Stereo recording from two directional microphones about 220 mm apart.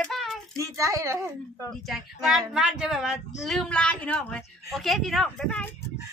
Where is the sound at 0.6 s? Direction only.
15° right (ahead or behind).